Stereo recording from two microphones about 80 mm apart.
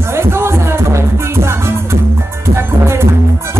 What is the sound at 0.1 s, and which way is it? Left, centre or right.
Music, right.